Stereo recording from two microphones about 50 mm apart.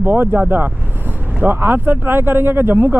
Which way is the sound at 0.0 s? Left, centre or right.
Right.